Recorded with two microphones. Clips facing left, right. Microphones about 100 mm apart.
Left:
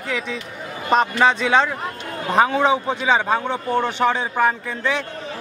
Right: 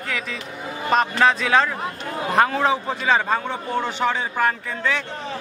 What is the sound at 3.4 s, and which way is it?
A man's voice, 15° left (ahead or behind).